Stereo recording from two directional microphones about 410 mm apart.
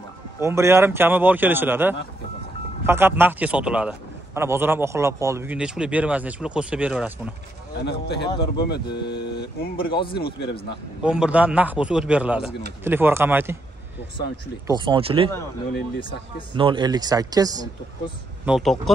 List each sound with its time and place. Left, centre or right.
0.4 s a man's voice: centre
7.8 s a man's voice: left
9.8 s speech: centre
10.4 s a man's voice: left
11.1 s a man's voice: centre
14.7 s speech: centre
16.0 s speech: centre
16.5 s speech: centre